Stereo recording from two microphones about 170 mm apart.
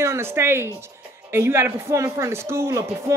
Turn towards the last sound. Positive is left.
turn(degrees=-15)  # may be behind; listen again after turning